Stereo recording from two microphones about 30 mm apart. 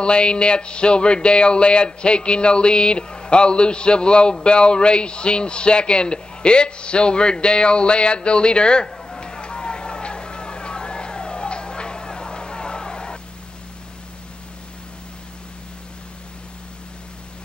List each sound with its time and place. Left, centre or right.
0.0 s speech: left
9.2 s vehicle: left